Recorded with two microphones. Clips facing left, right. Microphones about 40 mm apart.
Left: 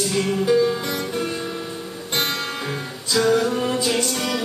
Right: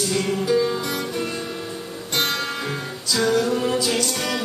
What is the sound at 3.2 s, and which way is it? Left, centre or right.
Music, centre.